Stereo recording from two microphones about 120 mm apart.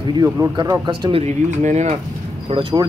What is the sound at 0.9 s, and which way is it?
Speech, 45° right (ahead or behind).